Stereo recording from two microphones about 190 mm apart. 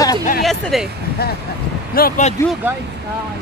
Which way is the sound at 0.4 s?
Centre (ahead or behind).